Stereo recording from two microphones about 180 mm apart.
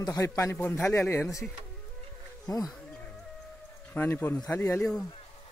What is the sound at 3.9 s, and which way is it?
A man's voice, 10° left (ahead or behind).